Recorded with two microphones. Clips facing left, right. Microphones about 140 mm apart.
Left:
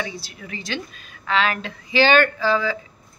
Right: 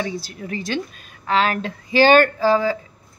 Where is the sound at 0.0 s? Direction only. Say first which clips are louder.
Right 4 dB; 40° right (ahead or behind).